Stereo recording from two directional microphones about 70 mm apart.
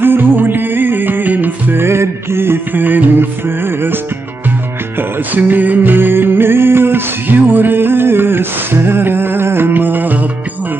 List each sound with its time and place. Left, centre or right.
0.0 s music: right